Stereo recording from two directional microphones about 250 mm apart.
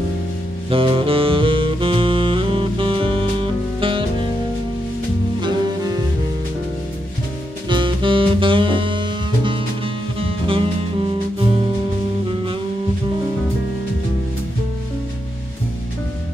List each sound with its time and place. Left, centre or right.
0.7 s saxophone: right
7.7 s music: centre